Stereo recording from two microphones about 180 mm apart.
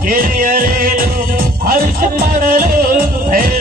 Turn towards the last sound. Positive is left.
turn(degrees=-50)  # may be behind; listen again after turning